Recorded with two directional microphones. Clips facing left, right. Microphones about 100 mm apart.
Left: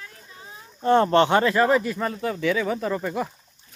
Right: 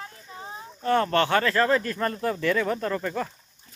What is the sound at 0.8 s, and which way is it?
Speech, 25° left (ahead or behind).